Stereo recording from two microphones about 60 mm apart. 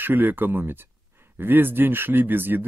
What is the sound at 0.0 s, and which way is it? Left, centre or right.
Speech, right.